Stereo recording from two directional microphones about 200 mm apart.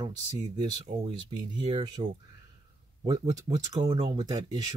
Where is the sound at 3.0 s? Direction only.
15° right (ahead or behind).